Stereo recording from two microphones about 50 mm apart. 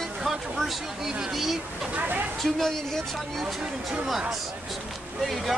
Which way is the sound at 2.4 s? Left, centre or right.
Centre.